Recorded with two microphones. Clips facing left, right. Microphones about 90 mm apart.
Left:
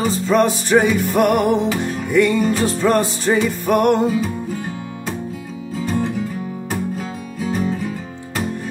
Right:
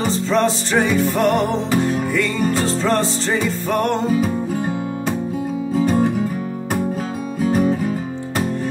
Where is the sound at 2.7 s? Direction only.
10° left (ahead or behind).